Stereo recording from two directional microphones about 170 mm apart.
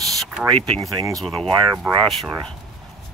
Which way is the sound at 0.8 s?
20° right (ahead or behind).